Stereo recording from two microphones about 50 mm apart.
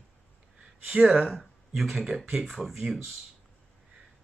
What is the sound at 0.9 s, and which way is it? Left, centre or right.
Speech, right.